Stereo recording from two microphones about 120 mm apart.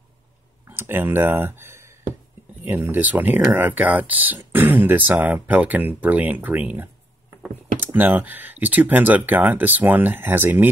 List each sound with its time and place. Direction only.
0.7 s speech: 20° right (ahead or behind)